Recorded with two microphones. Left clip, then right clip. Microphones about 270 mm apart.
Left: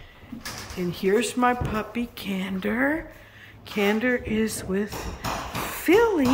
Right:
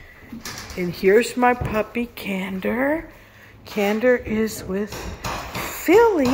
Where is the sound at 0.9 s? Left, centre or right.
Centre.